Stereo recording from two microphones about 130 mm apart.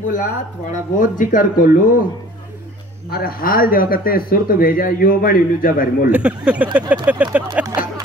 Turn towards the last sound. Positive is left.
turn(degrees=-10)  # may be behind; listen again after turning